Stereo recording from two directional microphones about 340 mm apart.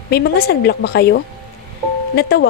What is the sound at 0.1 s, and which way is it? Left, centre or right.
A woman's voice, left.